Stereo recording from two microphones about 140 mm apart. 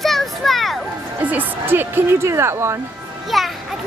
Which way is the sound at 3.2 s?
Centre (ahead or behind).